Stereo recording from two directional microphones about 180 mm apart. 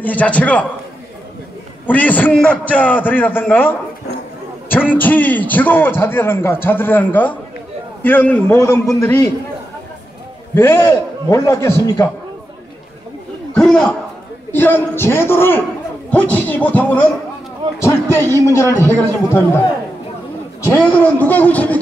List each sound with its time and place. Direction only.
0.0 s a man's voice: 10° left (ahead or behind)
1.9 s a man's voice: 10° left (ahead or behind)
4.9 s a man's voice: 10° left (ahead or behind)
10.5 s a man's voice: 15° left (ahead or behind)
13.6 s a man's voice: 5° left (ahead or behind)
18.1 s a man's voice: 15° left (ahead or behind)
20.8 s a man's voice: 10° left (ahead or behind)